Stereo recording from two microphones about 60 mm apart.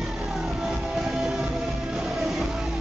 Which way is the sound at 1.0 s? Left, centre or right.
Centre.